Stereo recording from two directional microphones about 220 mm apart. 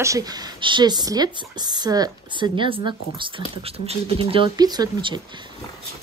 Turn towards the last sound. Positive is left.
turn(degrees=-20)  # may be behind; listen again after turning